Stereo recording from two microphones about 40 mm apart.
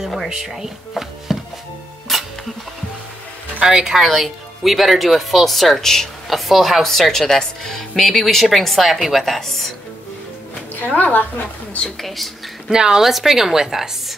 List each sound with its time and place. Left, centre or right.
0.0 s speech: centre
2.1 s music: centre
3.6 s speech: centre
4.0 s speech: centre
6.2 s a sound: centre
6.8 s speech: centre
10.8 s a woman's voice: left
12.6 s speech: centre
13.0 s speech: centre